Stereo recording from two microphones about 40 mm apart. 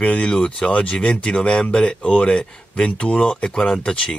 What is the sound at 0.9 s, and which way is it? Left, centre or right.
Speech, left.